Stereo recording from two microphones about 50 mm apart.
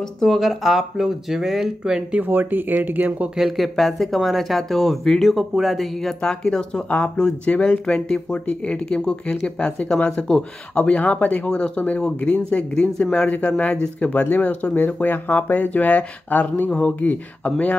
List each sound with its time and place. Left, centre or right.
0.2 s speech: centre
0.5 s speech: centre
2.1 s speech: right
3.3 s speech: centre
5.3 s speech: centre
6.2 s speech: centre